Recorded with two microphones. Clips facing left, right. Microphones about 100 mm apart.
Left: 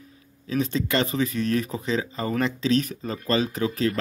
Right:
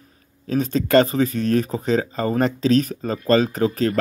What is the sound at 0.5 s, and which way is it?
Speech, 45° right (ahead or behind).